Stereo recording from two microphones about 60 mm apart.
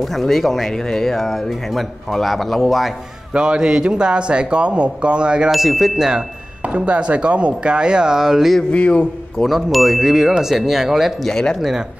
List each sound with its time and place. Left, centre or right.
0.0 s speech: centre
3.3 s speech: centre
5.5 s speech: centre
6.6 s speech: right
8.7 s speech: left
9.4 s speech: centre
11.2 s speech: centre